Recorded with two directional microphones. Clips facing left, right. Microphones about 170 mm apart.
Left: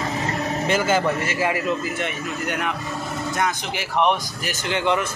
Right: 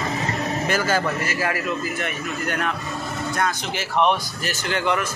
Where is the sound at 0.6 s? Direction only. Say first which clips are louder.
Left 3 dB; 20° left (ahead or behind).